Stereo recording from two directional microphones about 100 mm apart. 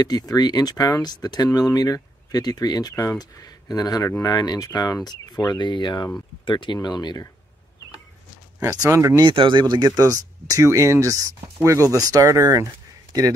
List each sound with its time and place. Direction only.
0.0 s speech: 40° left (ahead or behind)
8.9 s speech: 30° right (ahead or behind)
9.2 s speech: 55° right (ahead or behind)
9.8 s speech: 35° right (ahead or behind)